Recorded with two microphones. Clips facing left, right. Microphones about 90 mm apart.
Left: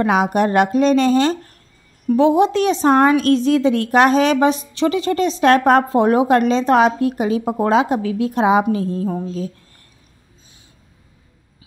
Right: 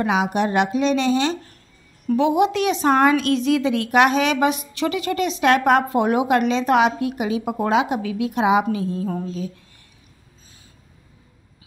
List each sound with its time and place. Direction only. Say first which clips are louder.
0.0 s speech: left 4 dB; 45° left (ahead or behind)
2.1 s a woman's voice: left 4 dB; 35° left (ahead or behind)
9.0 s a sound: left 3 dB; 25° left (ahead or behind)